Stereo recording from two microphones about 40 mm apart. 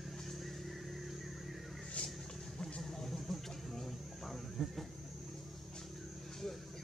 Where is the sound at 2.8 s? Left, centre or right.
Centre.